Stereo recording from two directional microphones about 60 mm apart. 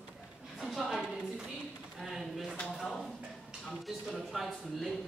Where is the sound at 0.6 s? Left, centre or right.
Centre.